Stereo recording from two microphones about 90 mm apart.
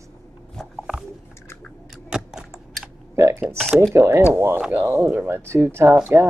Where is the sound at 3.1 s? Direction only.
30° right (ahead or behind).